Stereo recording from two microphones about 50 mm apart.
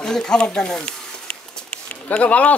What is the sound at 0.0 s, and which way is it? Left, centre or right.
Speech, centre.